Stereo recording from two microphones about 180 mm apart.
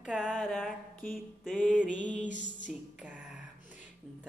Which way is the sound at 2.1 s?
45° left (ahead or behind).